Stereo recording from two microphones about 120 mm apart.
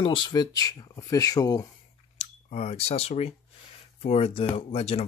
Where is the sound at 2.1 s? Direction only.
55° left (ahead or behind).